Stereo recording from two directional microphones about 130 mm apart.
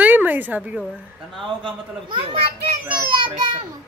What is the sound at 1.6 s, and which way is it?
A man's voice, 40° right (ahead or behind).